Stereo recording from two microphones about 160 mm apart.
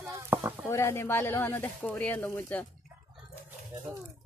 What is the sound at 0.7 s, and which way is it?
Speech, 15° left (ahead or behind).